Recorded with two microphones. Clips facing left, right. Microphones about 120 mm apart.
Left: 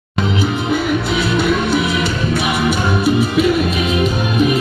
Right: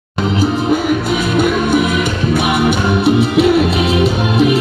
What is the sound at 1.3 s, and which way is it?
Music, 50° right (ahead or behind).